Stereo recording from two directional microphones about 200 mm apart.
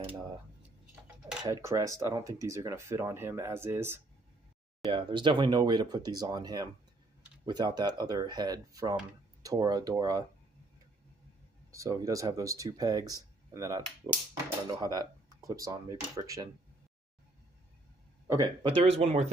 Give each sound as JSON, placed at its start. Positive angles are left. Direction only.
{"t": 0.0, "sound": "speech", "side_deg": -5}
{"t": 4.8, "sound": "speech", "side_deg": -25}
{"t": 11.7, "sound": "speech", "side_deg": -15}
{"t": 18.2, "sound": "speech", "side_deg": -15}